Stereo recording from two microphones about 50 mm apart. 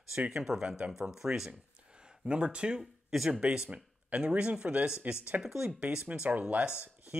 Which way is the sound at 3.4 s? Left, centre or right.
Centre.